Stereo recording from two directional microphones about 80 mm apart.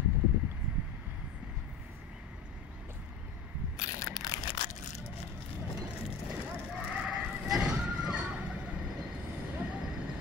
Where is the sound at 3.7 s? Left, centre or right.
Left.